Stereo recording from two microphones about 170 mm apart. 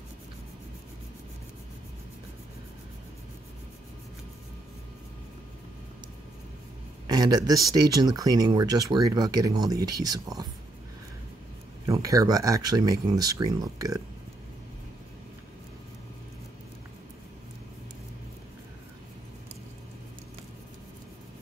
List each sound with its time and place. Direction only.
7.1 s speech: 25° right (ahead or behind)
11.8 s speech: 20° right (ahead or behind)